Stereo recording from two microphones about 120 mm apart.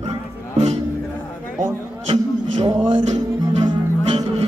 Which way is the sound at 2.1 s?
50° right (ahead or behind).